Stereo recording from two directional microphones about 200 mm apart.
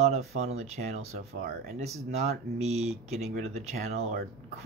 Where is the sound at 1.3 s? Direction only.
40° right (ahead or behind).